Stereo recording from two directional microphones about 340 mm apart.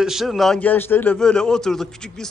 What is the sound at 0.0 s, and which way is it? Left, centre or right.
A man's voice, centre.